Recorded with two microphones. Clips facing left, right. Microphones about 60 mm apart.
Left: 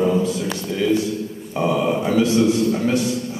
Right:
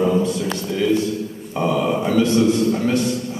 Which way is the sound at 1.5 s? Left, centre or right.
Centre.